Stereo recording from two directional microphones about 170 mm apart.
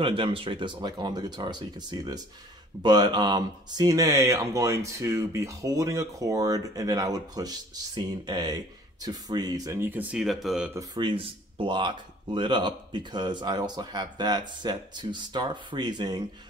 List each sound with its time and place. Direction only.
0.0 s speech: 30° right (ahead or behind); by 10.7 s centre (ahead or behind)
10.7 s speech: 25° right (ahead or behind)